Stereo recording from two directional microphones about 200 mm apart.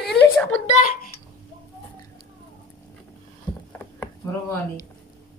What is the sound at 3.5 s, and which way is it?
Rowboat, 10° left (ahead or behind).